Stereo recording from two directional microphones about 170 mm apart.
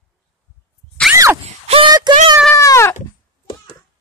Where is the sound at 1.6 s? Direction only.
30° right (ahead or behind).